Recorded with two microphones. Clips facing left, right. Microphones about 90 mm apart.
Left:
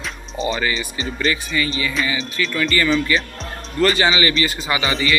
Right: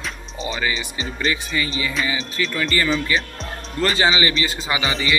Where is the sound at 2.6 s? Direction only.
25° right (ahead or behind).